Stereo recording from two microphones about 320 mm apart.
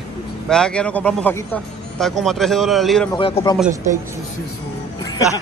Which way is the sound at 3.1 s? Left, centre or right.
Centre.